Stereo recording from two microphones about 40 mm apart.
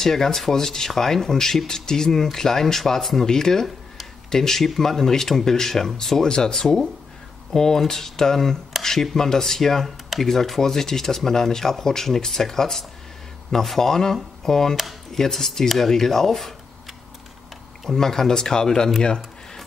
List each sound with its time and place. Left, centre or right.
0.0 s speech: centre
17.9 s speech: centre
19.0 s a sound: centre